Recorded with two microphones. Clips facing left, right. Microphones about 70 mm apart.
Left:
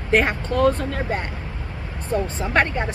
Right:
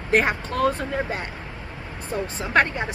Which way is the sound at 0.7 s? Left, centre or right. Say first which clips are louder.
Left 1 dB; centre.